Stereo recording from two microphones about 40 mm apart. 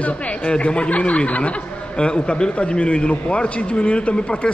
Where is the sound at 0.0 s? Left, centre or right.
Left.